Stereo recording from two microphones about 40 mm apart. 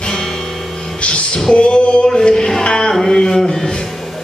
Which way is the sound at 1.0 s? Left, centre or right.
Left.